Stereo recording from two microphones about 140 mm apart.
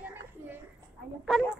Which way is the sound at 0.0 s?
15° right (ahead or behind).